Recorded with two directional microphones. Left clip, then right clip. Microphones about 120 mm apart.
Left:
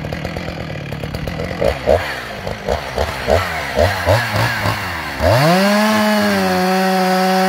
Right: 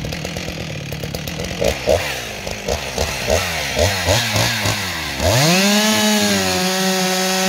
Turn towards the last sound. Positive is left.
turn(degrees=-20)  # may be behind; listen again after turning